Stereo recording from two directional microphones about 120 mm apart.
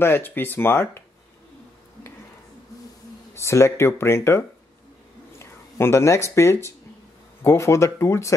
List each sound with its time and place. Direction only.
0.0 s speech: 20° left (ahead or behind)
3.3 s speech: 25° left (ahead or behind)